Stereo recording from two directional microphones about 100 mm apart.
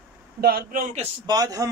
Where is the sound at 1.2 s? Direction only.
40° right (ahead or behind).